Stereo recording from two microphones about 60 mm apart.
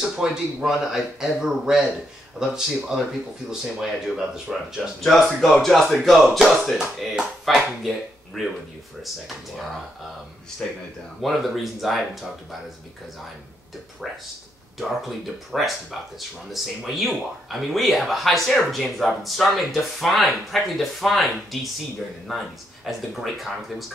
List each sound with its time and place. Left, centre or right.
0.1 s speech: centre
10.6 s speech: centre
11.1 s speech: centre
14.0 s speech: centre